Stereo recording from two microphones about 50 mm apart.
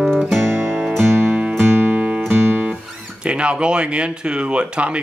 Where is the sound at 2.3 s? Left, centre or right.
Right.